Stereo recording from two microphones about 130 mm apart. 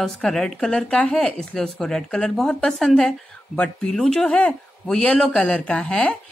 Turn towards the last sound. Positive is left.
turn(degrees=5)  # may be behind; listen again after turning